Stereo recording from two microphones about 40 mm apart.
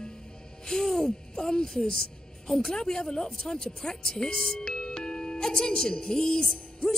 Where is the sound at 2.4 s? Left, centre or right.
Centre.